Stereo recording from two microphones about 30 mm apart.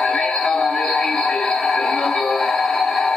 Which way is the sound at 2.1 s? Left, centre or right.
Centre.